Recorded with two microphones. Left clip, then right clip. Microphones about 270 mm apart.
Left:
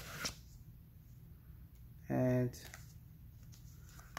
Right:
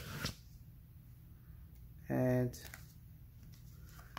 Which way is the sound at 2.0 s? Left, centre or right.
Centre.